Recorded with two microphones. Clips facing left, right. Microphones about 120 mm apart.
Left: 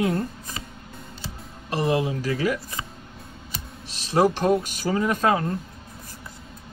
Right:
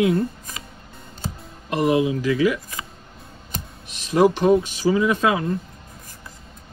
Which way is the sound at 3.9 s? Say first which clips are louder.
Right 3 dB; 35° left (ahead or behind).